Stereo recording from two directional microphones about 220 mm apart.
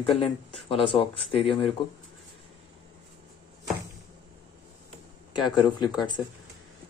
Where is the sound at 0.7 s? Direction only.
25° left (ahead or behind).